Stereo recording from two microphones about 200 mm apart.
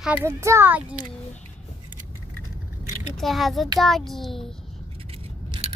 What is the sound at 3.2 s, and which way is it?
A child's voice, centre (ahead or behind).